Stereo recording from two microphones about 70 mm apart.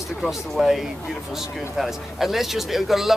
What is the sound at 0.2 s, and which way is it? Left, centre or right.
Speech, centre.